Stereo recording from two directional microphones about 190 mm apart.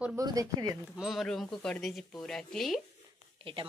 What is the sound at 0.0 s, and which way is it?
Speech, 15° right (ahead or behind).